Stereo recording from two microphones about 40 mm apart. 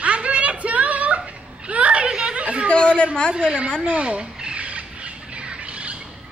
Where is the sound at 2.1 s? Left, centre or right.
Right.